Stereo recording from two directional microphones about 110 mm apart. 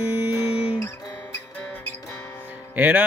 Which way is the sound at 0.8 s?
25° left (ahead or behind).